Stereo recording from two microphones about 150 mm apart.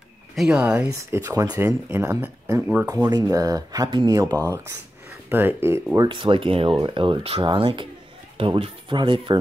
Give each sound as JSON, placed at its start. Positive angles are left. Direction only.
{"t": 0.4, "sound": "speech", "side_deg": -5}
{"t": 1.1, "sound": "speech", "side_deg": -20}
{"t": 3.0, "sound": "speech", "side_deg": -25}
{"t": 5.3, "sound": "speech", "side_deg": -15}
{"t": 6.0, "sound": "speech", "side_deg": -35}